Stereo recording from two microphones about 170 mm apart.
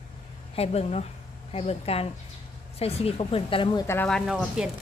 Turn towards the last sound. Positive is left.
turn(degrees=-5)  # may be behind; listen again after turning